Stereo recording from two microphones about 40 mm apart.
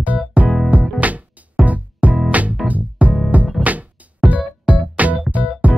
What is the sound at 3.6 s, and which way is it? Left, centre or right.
Music, right.